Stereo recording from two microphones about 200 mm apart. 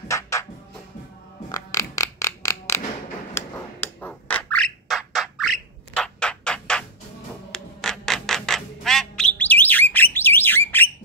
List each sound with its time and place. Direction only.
0.1 s music: 15° left (ahead or behind)
1.5 s a sound: 15° left (ahead or behind)
7.5 s squawk: centre (ahead or behind)